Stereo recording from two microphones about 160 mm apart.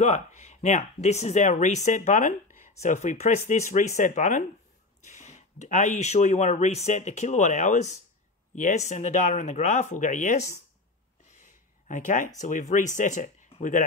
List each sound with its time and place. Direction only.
0.0 s speech: 45° left (ahead or behind)
11.9 s speech: 50° left (ahead or behind)